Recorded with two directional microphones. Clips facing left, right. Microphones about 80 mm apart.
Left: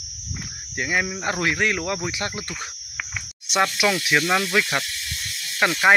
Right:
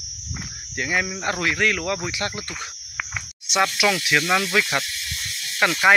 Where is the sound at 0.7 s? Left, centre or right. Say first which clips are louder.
Even; centre.